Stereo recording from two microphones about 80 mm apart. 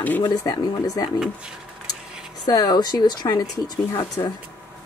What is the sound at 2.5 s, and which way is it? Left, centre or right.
Speech, left.